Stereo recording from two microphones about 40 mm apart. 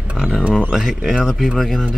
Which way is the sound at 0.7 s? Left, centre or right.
Centre.